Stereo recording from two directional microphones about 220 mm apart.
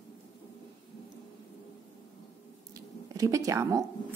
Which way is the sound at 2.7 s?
15° right (ahead or behind).